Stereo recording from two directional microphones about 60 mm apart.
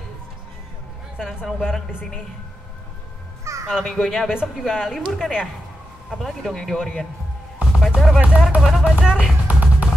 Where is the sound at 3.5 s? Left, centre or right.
Right.